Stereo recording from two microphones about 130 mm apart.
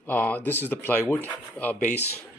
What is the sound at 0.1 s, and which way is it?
Speech, 10° left (ahead or behind).